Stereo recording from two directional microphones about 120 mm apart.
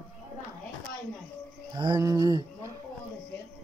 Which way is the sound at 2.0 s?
30° right (ahead or behind).